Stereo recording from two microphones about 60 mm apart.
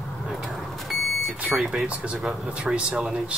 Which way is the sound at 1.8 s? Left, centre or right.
Centre.